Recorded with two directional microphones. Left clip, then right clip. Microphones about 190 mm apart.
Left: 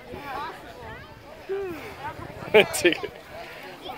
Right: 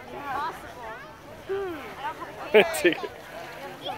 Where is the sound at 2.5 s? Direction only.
20° left (ahead or behind).